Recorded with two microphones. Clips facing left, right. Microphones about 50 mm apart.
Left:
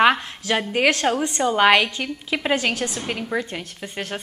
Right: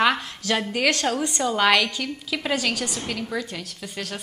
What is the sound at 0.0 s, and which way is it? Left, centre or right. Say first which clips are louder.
A woman's voice: left 4 dB; left.